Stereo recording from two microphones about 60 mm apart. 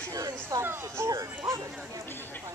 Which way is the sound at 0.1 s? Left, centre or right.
Right.